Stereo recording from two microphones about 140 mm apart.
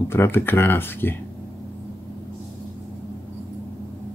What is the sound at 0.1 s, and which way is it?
Speech, 15° left (ahead or behind).